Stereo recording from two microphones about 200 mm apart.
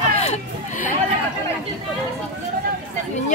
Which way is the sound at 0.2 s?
35° left (ahead or behind).